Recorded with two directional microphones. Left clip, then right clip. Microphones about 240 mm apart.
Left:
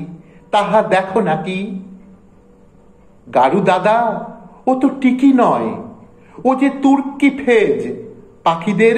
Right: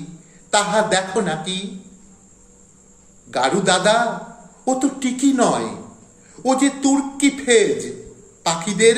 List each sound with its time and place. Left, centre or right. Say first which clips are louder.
0.5 s a man's voice: left 4 dB; centre
3.3 s a man's voice: left 5 dB; centre